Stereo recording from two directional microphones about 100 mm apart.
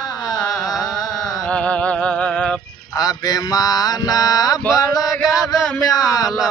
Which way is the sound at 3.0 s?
40° left (ahead or behind).